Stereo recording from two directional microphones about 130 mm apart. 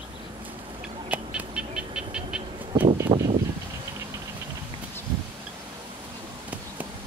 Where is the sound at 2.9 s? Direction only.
25° right (ahead or behind).